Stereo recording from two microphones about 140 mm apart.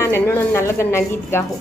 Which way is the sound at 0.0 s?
15° left (ahead or behind).